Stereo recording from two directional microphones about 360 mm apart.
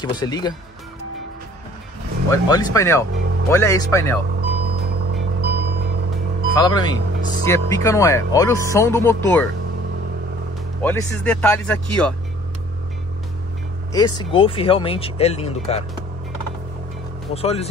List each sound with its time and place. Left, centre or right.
0.1 s speech: centre
2.3 s speech: centre
5.4 s music: right
6.5 s speech: centre
10.8 s speech: centre
13.9 s speech: centre
17.3 s speech: centre